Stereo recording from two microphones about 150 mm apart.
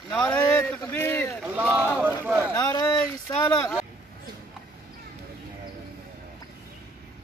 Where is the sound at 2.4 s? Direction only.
20° left (ahead or behind).